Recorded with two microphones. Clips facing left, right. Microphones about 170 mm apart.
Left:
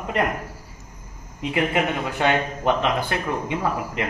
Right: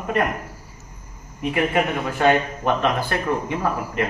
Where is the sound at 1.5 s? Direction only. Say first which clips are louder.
Right 1 dB; 20° left (ahead or behind).